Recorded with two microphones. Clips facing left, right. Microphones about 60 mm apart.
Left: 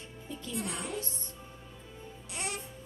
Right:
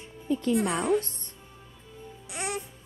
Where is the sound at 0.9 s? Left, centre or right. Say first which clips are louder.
Right 13 dB; right.